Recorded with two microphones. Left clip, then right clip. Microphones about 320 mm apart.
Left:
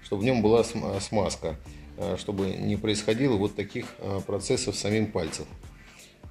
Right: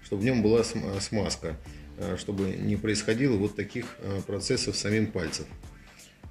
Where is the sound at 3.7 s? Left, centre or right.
Centre.